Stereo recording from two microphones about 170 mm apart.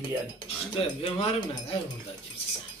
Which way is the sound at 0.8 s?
35° left (ahead or behind).